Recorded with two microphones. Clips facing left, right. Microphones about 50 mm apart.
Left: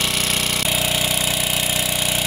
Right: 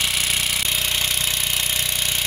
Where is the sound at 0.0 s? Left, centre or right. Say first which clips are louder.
Left 1 dB; centre.